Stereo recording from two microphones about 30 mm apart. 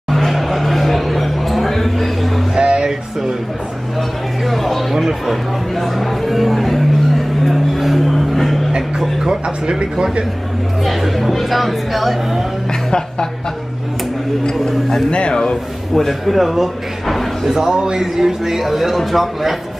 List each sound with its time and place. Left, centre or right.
0.3 s a sound: centre
2.5 s music: right
4.5 s a sound: centre
4.9 s music: centre
9.2 s music: right
10.8 s speech: centre
15.0 s a sound: left
15.9 s speech: centre
17.1 s music: centre
17.5 s a man's voice: centre